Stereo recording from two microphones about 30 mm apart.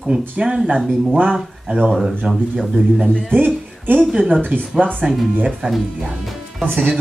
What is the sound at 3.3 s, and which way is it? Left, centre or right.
Speech, right.